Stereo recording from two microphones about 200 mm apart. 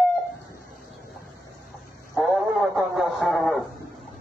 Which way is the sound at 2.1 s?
Centre (ahead or behind).